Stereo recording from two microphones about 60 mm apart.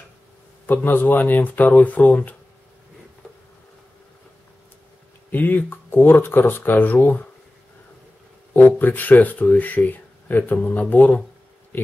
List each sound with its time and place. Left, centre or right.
0.7 s speech: left
5.3 s speech: left
8.5 s speech: left
11.7 s speech: left